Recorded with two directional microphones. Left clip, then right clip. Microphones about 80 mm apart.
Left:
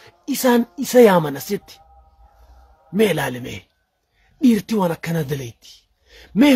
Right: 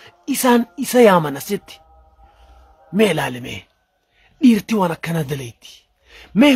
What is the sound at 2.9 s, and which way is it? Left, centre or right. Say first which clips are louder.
Speech: right 1 dB; right.